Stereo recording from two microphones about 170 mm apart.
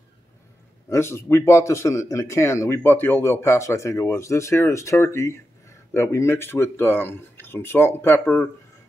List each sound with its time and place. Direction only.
0.8 s speech: 15° left (ahead or behind)